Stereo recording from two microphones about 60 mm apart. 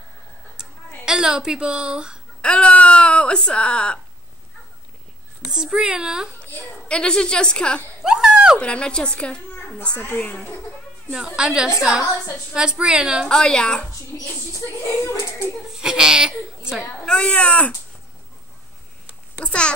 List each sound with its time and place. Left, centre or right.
0.6 s a sound: centre
2.4 s speech: centre
5.4 s a child's voice: centre
6.9 s speech: centre
8.0 s dog: centre
8.5 s speech: centre
10.0 s speech: left
11.1 s a child's voice: centre
13.3 s speech: centre
14.1 s speech: left
15.7 s speech: centre
17.0 s speech: centre
19.4 s speech: centre